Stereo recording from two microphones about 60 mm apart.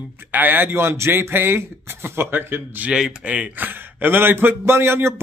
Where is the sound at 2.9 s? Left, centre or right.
Centre.